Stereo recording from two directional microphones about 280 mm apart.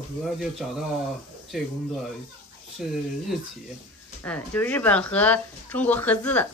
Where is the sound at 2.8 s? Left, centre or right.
Centre.